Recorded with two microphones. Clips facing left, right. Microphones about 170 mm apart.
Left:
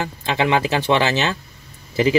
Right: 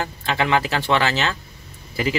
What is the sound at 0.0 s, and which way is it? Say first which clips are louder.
Speech: left 2 dB; 20° left (ahead or behind).